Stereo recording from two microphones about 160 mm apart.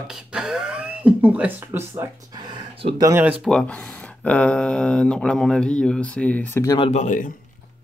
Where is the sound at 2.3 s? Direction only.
30° right (ahead or behind).